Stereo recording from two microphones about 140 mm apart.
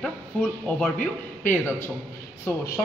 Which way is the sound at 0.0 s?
5° left (ahead or behind).